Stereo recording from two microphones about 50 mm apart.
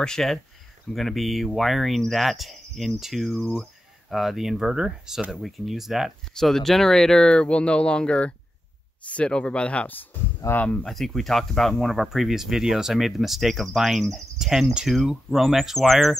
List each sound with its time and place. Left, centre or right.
0.0 s speech: centre
6.3 s speech: centre; by 10.9 s left
10.9 s speech: centre
14.9 s speech: centre